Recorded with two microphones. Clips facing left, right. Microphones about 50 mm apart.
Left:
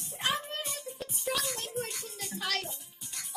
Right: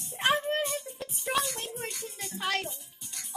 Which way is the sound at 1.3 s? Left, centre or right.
Centre.